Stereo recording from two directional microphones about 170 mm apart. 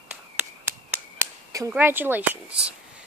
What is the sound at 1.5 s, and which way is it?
Speech, 15° right (ahead or behind).